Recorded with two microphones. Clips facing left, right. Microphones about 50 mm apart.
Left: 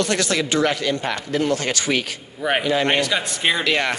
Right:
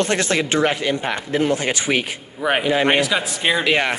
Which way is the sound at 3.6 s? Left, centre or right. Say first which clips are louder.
Right 2 dB; centre.